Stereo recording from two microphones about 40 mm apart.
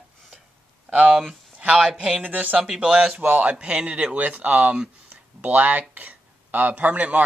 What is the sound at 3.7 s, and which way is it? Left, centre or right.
Speech, centre.